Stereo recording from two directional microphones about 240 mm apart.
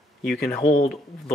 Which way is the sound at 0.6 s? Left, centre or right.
Left.